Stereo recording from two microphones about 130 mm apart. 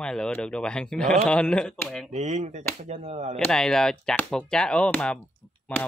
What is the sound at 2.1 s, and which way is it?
Speech, 60° right (ahead or behind).